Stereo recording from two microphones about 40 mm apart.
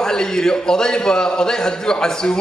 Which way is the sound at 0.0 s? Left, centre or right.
Centre.